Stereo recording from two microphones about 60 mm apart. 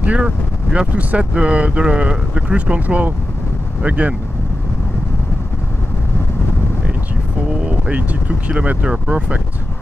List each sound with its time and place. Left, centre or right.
0.0 s speech: right
7.6 s speech: right